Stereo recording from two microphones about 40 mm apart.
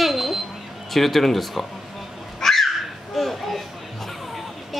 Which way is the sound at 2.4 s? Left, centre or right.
Centre.